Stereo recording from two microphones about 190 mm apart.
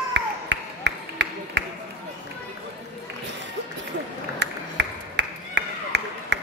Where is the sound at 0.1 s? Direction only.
65° right (ahead or behind).